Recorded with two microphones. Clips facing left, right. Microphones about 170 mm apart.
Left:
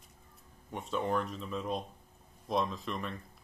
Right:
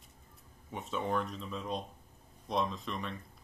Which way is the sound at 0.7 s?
Centre (ahead or behind).